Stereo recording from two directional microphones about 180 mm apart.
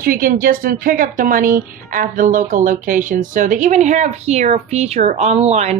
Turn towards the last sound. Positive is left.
turn(degrees=-35)  # may be behind; listen again after turning